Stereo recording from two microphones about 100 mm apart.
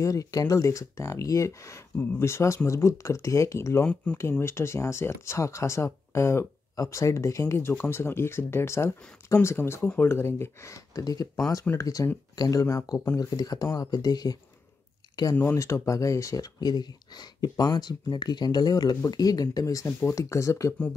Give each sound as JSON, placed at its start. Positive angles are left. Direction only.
{"t": 0.0, "sound": "speech", "side_deg": 35}
{"t": 3.8, "sound": "speech", "side_deg": 10}
{"t": 4.2, "sound": "speech", "side_deg": 25}
{"t": 15.5, "sound": "speech", "side_deg": 30}